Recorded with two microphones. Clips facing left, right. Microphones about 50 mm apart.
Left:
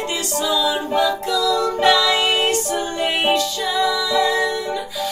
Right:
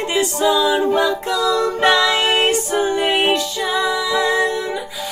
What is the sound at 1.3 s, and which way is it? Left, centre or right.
Music, right.